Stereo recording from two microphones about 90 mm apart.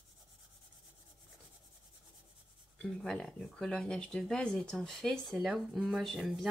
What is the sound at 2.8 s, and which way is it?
Speech, 5° left (ahead or behind).